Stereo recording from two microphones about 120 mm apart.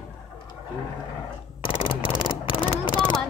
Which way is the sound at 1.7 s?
50° left (ahead or behind).